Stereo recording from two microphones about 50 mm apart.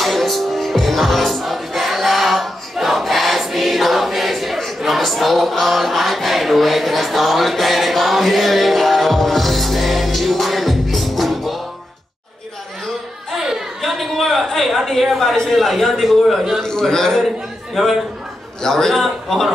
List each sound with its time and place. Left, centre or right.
0.0 s music: centre
13.7 s a woman's voice: centre
16.6 s a man's voice: centre
17.7 s a woman's voice: centre